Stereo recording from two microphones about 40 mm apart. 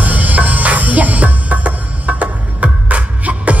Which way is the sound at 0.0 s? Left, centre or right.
Right.